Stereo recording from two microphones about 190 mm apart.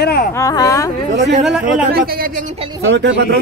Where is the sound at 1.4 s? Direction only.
5° right (ahead or behind).